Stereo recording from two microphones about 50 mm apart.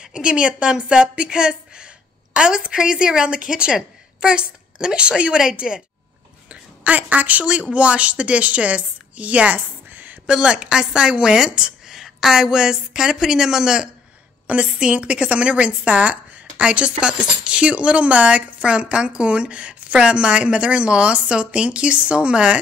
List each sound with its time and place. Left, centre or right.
0.0 s a woman's voice: centre
5.7 s a woman's voice: centre
6.5 s a sound: right
7.7 s a woman's voice: right
10.2 s a woman's voice: centre
14.5 s a woman's voice: right